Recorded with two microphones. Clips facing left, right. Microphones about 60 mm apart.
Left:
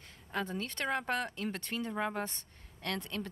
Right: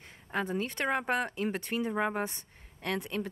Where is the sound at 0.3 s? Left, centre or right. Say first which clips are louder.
Right 4 dB; centre.